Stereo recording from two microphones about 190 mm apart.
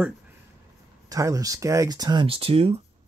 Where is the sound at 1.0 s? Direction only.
20° right (ahead or behind).